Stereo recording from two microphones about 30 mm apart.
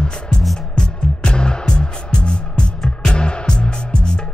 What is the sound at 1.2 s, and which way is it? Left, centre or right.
Music, left.